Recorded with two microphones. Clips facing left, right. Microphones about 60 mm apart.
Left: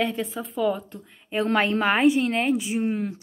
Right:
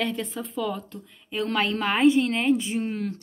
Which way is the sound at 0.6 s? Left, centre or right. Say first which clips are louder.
Left 5 dB; centre.